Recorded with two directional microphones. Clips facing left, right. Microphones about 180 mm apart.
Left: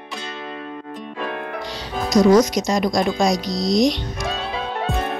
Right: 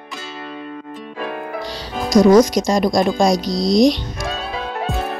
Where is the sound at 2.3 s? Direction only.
35° right (ahead or behind).